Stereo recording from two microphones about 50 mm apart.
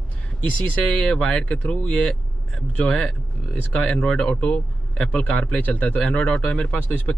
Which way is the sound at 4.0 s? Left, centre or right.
Centre.